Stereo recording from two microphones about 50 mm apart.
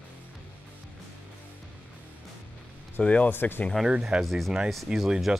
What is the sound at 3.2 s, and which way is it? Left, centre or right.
Speech, left.